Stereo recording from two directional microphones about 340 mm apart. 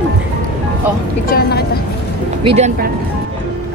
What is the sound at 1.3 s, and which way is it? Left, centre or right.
Speech, left.